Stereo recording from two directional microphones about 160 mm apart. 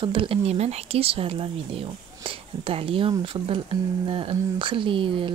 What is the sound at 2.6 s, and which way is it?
A woman's voice, 35° right (ahead or behind).